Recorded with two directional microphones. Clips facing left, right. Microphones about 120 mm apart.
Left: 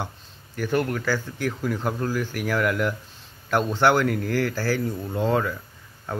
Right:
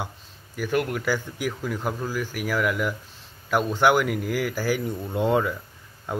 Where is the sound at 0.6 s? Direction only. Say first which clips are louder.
Left 1 dB; 5° right (ahead or behind).